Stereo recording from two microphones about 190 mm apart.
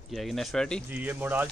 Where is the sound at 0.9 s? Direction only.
10° right (ahead or behind).